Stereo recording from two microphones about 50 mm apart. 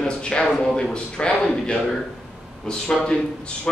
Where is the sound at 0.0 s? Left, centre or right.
Centre.